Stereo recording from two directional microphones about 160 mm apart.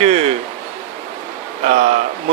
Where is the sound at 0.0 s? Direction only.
40° right (ahead or behind).